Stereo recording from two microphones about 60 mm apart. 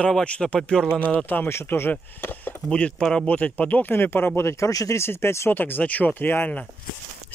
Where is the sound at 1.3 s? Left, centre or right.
Left.